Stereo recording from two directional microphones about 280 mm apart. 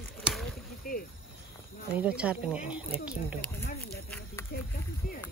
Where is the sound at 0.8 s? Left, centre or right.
Left.